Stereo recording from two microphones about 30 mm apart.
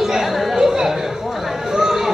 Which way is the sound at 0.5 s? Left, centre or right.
Centre.